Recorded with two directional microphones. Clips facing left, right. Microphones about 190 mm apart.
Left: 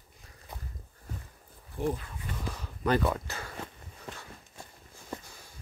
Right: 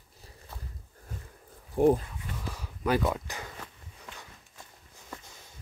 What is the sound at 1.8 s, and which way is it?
Speech, 55° right (ahead or behind).